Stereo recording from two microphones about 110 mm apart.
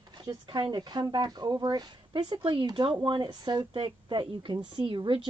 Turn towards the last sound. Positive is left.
turn(degrees=-50)  # may be behind; listen again after turning